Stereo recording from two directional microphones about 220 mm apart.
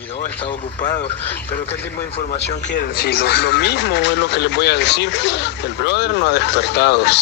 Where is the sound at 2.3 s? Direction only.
40° left (ahead or behind).